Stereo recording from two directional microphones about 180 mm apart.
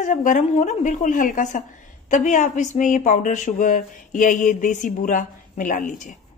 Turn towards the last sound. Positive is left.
turn(degrees=45)  # may be behind; listen again after turning